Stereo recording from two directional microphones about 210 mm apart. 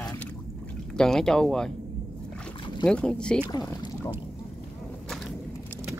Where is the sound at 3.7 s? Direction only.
20° left (ahead or behind).